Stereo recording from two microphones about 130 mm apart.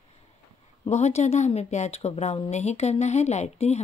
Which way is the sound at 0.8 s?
60° left (ahead or behind).